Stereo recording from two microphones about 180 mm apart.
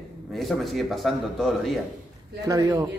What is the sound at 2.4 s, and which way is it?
Speech, 20° right (ahead or behind).